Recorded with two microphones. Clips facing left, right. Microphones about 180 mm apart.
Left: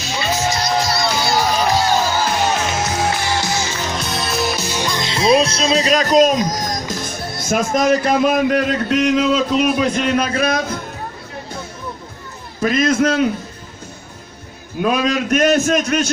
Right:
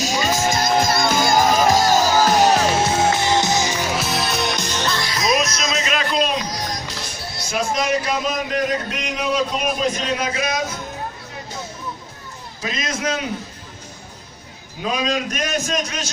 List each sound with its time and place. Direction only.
0.0 s crowd: 40° right (ahead or behind); by 5.0 s 10° left (ahead or behind)
5.0 s music: 30° left (ahead or behind); by 10.8 s 55° left (ahead or behind)
12.5 s a man's voice: 55° left (ahead or behind)
14.8 s a man's voice: 55° left (ahead or behind)